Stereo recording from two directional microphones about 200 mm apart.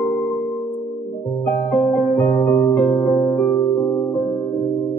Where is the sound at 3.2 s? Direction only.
25° left (ahead or behind).